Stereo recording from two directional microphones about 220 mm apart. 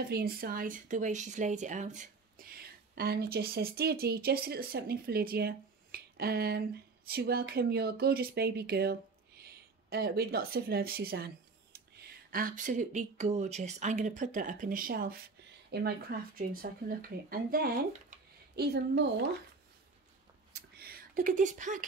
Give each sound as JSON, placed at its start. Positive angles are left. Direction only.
{"t": 0.1, "sound": "speech", "side_deg": -40}
{"t": 12.3, "sound": "speech", "side_deg": -40}
{"t": 20.5, "sound": "a sound", "side_deg": -45}